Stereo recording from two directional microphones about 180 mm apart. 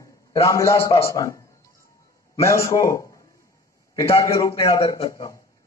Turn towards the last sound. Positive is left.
turn(degrees=20)  # may be behind; listen again after turning